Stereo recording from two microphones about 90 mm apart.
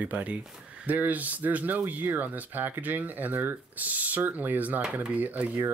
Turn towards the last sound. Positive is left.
turn(degrees=-20)  # may be behind; listen again after turning